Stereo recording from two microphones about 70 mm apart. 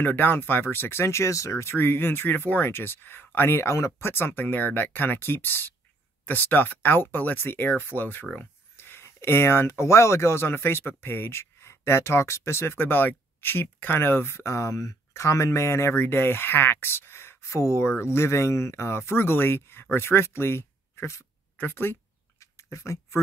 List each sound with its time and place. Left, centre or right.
0.0 s speech: left
4.1 s speech: left
22.4 s a sound: left